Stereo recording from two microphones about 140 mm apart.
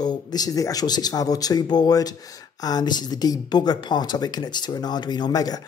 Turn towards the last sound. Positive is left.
turn(degrees=30)  # may be behind; listen again after turning